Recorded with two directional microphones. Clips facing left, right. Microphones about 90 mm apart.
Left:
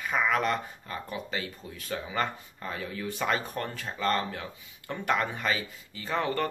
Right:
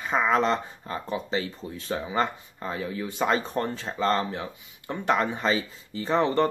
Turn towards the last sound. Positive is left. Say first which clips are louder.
# right 6 dB
turn(degrees=-25)  # may be behind; listen again after turning